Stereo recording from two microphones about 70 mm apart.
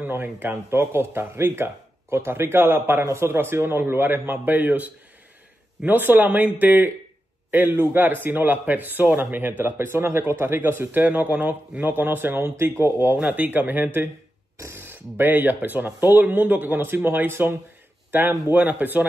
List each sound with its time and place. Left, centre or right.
0.0 s speech: right
13.1 s speech: right